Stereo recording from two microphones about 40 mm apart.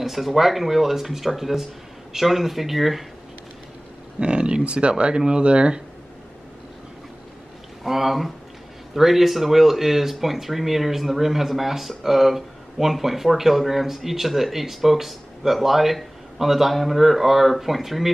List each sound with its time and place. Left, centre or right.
0.0 s speech: centre
4.2 s speech: right
7.8 s speech: centre